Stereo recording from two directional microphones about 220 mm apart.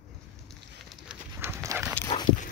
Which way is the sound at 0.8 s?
5° right (ahead or behind).